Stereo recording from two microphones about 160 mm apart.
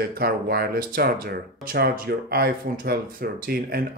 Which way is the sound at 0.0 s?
70° right (ahead or behind).